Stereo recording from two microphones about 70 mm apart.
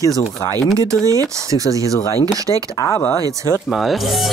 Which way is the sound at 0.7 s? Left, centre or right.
Right.